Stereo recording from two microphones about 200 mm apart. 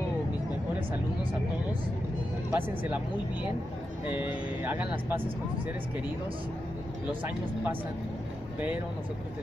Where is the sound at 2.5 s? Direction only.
10° right (ahead or behind).